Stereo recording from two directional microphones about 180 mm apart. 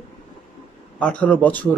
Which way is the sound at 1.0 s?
5° left (ahead or behind).